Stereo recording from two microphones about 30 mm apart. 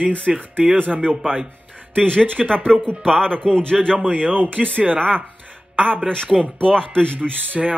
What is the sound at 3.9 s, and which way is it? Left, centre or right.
Speech, right.